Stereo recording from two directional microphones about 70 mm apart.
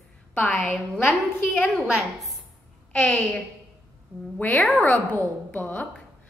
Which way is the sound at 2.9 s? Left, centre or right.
Centre.